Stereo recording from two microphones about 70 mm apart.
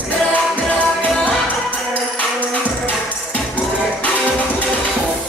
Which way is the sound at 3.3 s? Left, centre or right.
Left.